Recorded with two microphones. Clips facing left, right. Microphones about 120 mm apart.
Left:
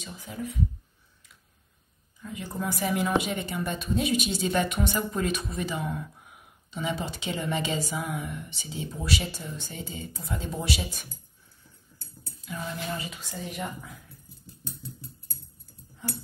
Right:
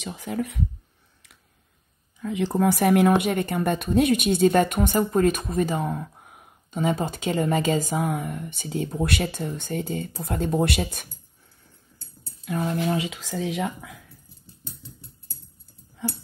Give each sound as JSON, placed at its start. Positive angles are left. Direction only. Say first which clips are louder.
{"t": 0.0, "sound": "speech", "louder": "right 7 dB", "side_deg": -75}
{"t": 2.1, "sound": "a woman's voice", "louder": "right 11 dB", "side_deg": -90}
{"t": 12.4, "sound": "speech", "louder": "right 9 dB", "side_deg": -60}
{"t": 12.9, "sound": "speech", "louder": "right 8 dB", "side_deg": -90}